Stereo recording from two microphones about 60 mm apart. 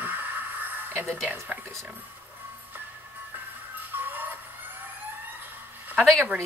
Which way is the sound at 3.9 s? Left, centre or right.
Right.